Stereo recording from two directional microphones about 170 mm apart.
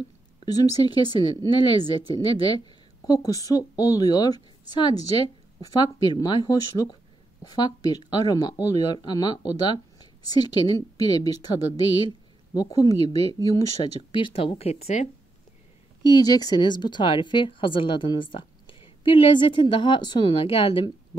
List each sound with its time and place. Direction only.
0.5 s a woman's voice: 20° left (ahead or behind)
14.1 s speech: 30° left (ahead or behind)
16.3 s a woman's voice: 20° left (ahead or behind)